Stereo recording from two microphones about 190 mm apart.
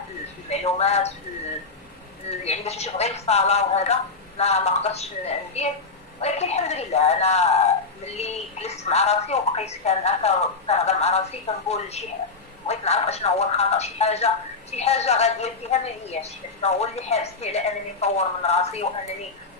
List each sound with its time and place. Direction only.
0.5 s speech: 35° left (ahead or behind)
2.4 s speech: 35° left (ahead or behind)